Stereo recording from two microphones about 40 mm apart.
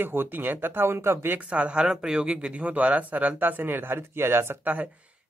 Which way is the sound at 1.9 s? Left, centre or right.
Centre.